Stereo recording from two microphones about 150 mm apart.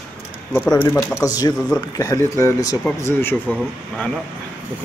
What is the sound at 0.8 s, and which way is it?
Speech, 10° left (ahead or behind).